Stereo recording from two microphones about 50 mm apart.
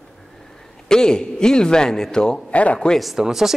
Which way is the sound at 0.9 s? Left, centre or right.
Centre.